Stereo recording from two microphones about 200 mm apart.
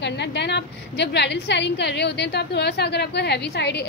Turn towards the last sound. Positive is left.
turn(degrees=60)  # may be behind; listen again after turning